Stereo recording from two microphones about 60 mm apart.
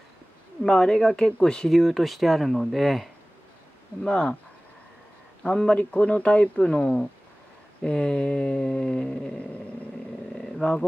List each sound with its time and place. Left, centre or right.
0.7 s speech: centre
1.7 s speech: centre
4.0 s speech: centre
5.4 s speech: centre
7.8 s a sound: centre
8.6 s speech: centre
10.3 s a sound: centre